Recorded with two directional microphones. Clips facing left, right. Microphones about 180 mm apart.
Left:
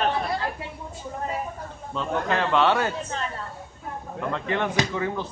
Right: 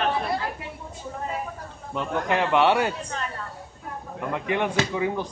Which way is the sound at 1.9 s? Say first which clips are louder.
Right 1 dB; 15° right (ahead or behind).